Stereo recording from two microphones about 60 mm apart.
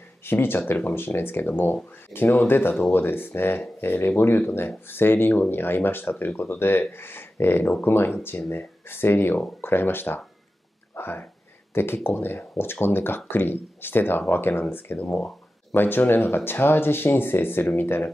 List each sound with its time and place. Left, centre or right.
0.2 s speech: left